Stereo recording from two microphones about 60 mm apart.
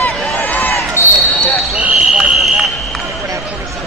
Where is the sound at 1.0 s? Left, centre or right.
Left.